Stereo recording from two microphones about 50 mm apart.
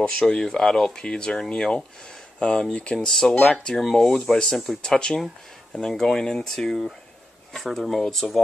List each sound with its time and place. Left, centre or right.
0.3 s speech: centre
3.1 s speech: centre